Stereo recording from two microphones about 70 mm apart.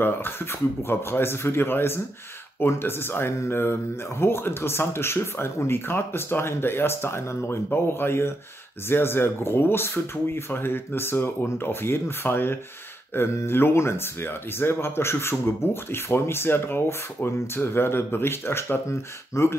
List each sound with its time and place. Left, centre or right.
0.0 s speech: left